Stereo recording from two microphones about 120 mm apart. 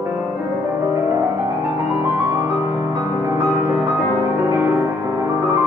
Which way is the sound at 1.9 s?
25° right (ahead or behind).